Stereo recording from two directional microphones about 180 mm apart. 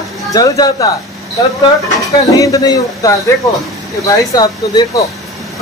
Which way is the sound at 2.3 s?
20° left (ahead or behind).